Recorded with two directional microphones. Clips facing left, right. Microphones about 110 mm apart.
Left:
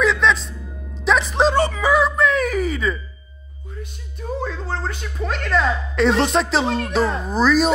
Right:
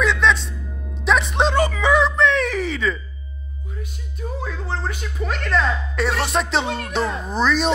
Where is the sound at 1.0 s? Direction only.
Centre (ahead or behind).